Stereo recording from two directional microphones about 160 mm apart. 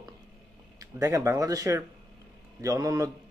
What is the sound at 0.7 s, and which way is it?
Speech, 20° right (ahead or behind).